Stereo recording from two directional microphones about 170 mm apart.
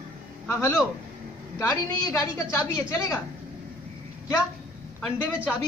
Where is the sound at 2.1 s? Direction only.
20° left (ahead or behind).